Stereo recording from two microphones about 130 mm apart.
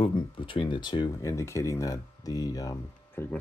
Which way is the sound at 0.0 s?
40° left (ahead or behind).